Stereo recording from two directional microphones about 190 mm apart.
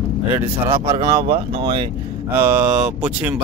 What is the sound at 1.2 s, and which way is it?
Speech, 30° right (ahead or behind).